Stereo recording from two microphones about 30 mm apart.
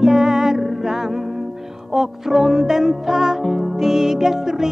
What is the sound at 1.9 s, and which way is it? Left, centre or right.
Music, centre.